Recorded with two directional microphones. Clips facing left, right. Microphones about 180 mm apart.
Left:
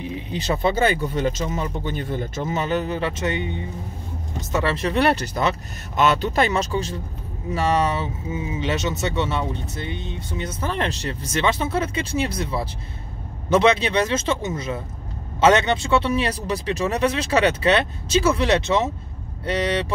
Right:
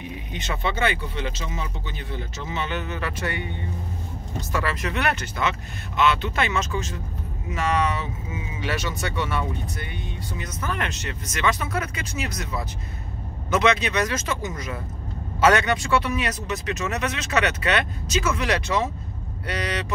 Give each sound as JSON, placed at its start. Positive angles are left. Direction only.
{"t": 0.0, "sound": "speech", "side_deg": 30}